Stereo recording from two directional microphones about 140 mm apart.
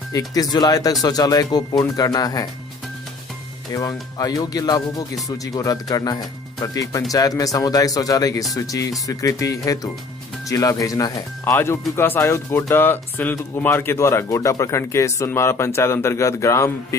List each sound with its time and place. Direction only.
0.1 s speech: 25° left (ahead or behind)
3.7 s speech: 25° left (ahead or behind)